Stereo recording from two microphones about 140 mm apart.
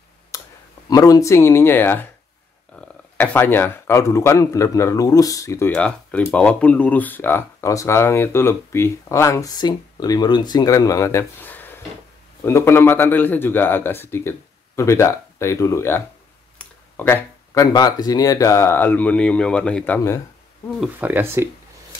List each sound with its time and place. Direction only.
0.3 s a sound: 25° left (ahead or behind)
0.8 s speech: 25° left (ahead or behind)
5.7 s speech: 10° left (ahead or behind)
16.5 s a sound: 15° left (ahead or behind)
17.7 s speech: 30° left (ahead or behind); by 20.0 s 5° left (ahead or behind)
21.0 s speech: 15° right (ahead or behind)